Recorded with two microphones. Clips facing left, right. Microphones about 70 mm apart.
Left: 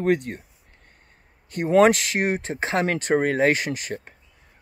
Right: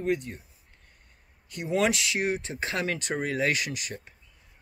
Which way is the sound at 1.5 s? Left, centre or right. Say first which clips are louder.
Left 9 dB; left.